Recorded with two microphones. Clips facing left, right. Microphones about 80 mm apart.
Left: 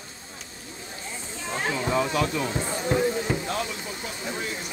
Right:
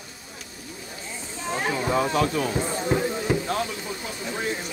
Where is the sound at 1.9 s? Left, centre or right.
Right.